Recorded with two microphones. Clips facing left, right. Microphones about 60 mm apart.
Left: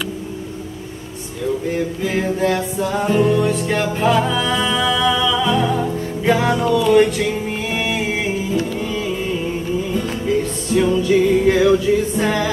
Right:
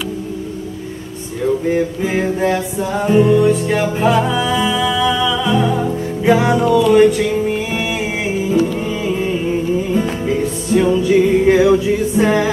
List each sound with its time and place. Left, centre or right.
1.7 s mantra: centre
2.8 s music: centre
8.5 s music: centre